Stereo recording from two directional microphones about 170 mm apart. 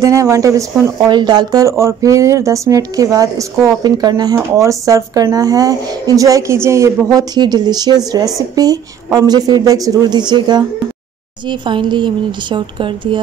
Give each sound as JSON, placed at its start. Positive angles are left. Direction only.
{"t": 0.0, "sound": "speech", "side_deg": -20}